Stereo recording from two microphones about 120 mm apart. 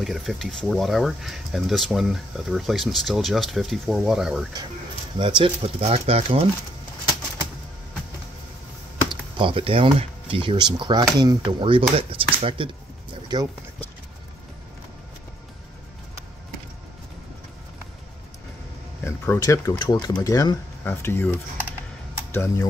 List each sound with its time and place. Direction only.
0.0 s speech: centre (ahead or behind)
5.2 s speech: 55° right (ahead or behind)
9.1 s speech: 45° right (ahead or behind)
13.3 s speech: 35° right (ahead or behind)
19.0 s speech: 20° left (ahead or behind)
19.8 s speech: 35° left (ahead or behind)
20.8 s speech: 20° left (ahead or behind)